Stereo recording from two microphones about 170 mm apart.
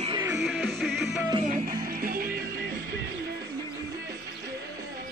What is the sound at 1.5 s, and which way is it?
Music, 60° right (ahead or behind).